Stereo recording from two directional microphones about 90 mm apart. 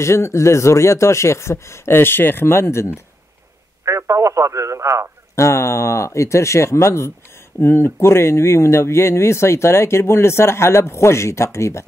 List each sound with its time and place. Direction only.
0.0 s speech: 30° left (ahead or behind)
3.8 s speech: 35° right (ahead or behind)
5.3 s speech: 35° left (ahead or behind)